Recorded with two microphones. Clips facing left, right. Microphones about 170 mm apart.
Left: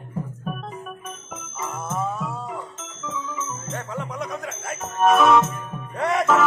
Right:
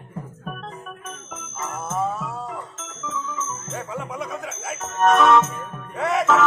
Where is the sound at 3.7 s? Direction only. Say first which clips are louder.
Even; 5° right (ahead or behind).